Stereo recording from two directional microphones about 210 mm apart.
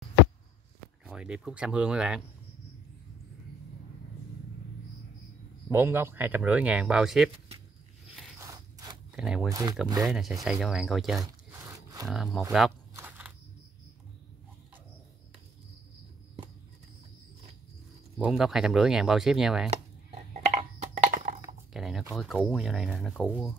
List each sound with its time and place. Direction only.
1.0 s speech: 5° right (ahead or behind)
5.7 s speech: 10° right (ahead or behind)
8.4 s scissors: 15° right (ahead or behind)
9.1 s speech: 5° right (ahead or behind)
9.5 s speech: 15° right (ahead or behind)
10.0 s speech: centre (ahead or behind)
11.6 s a sound: 15° right (ahead or behind)
12.1 s speech: centre (ahead or behind)
12.9 s a sound: 10° right (ahead or behind)
18.1 s speech: centre (ahead or behind)
19.7 s a sound: 30° right (ahead or behind)
21.7 s a sound: centre (ahead or behind)
22.1 s speech: centre (ahead or behind)